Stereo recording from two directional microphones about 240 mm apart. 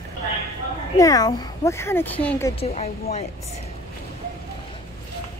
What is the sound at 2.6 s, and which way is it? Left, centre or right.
Speech, left.